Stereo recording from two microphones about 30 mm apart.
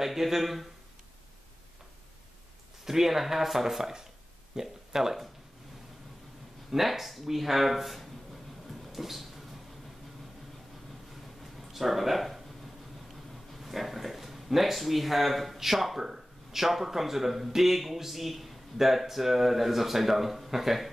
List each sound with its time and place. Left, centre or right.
0.0 s speech: centre
2.8 s speech: centre
6.7 s speech: centre
8.6 s a sound: centre
11.7 s speech: centre